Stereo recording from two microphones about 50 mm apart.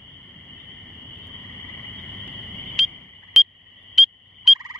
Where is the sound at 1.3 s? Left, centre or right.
Left.